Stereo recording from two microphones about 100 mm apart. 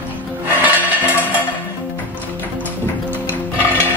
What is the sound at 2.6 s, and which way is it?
Music, 20° left (ahead or behind).